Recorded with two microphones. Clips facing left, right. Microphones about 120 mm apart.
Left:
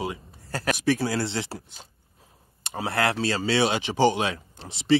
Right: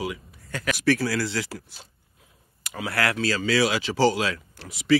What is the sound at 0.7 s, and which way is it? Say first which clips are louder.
Speech: right 3 dB; 20° left (ahead or behind).